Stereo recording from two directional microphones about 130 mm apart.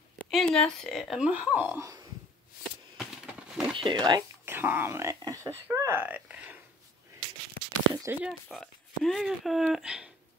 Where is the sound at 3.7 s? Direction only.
40° right (ahead or behind).